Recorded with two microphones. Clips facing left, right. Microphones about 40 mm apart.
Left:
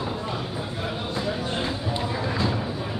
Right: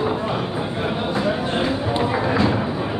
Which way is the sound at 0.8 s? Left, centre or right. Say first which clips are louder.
Right 7 dB; right.